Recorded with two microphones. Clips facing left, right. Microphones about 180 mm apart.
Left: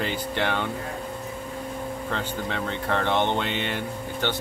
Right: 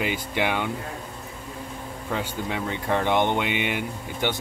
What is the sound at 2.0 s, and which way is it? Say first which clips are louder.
Speech: right 4 dB; 10° right (ahead or behind).